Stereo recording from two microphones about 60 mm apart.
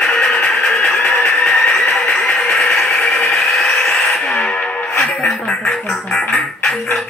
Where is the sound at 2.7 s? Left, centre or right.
Centre.